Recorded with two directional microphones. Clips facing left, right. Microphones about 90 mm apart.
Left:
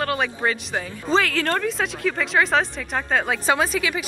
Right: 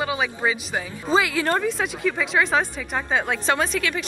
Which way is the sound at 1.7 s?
Centre (ahead or behind).